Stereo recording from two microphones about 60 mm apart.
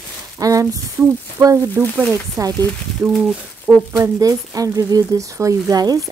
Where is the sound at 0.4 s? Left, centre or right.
Right.